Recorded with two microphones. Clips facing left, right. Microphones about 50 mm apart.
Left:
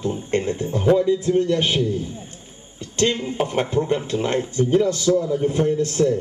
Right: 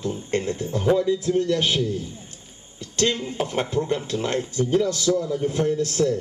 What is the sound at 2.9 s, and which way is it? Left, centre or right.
A man's voice, centre.